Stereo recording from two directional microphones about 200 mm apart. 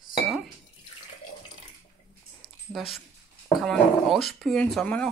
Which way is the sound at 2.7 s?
Centre (ahead or behind).